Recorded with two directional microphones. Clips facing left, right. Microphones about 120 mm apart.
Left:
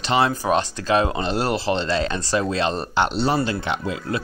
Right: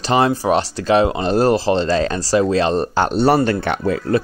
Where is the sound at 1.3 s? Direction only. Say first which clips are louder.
Right 7 dB; 40° right (ahead or behind).